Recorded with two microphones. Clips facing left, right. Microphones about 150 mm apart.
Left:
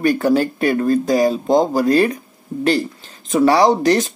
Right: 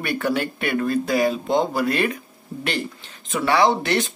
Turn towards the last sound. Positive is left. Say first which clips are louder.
# left 5 dB
turn(degrees=40)  # may be behind; listen again after turning